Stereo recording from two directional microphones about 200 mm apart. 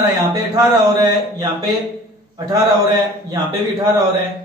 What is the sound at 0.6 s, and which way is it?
Speech, 20° right (ahead or behind).